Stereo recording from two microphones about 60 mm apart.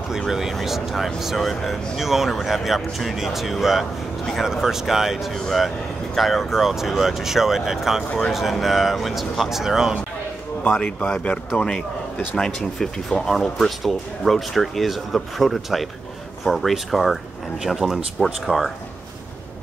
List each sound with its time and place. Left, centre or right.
0.3 s speech: centre
10.7 s speech: centre
12.4 s speech: centre